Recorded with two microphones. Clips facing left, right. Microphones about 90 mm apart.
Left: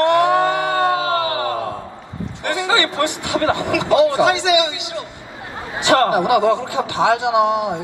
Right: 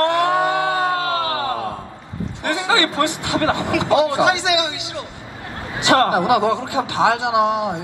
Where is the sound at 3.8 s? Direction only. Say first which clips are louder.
Left 2 dB; 20° right (ahead or behind).